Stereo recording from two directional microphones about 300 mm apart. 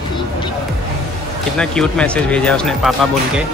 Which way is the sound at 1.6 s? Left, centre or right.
Centre.